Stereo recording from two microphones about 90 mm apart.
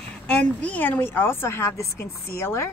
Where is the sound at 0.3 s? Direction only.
15° left (ahead or behind).